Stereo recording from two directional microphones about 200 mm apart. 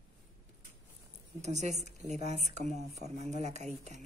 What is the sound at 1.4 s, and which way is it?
Speech, 35° right (ahead or behind).